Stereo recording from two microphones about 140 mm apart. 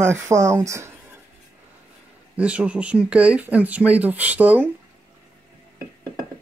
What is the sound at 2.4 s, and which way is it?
Speech, 10° right (ahead or behind).